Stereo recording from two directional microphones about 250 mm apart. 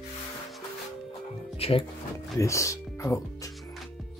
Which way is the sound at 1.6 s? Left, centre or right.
Left.